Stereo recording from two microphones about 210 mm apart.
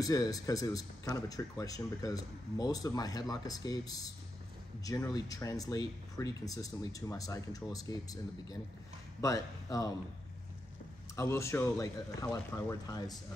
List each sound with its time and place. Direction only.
0.0 s speech: 15° left (ahead or behind)
11.1 s speech: 15° left (ahead or behind)